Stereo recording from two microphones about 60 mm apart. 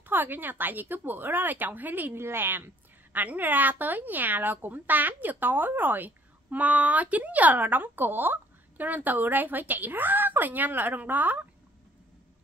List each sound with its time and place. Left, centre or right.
0.0 s a woman's voice: right
2.1 s a woman's voice: right